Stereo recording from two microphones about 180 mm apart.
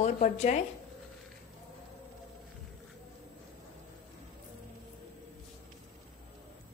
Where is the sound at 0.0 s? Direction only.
40° left (ahead or behind).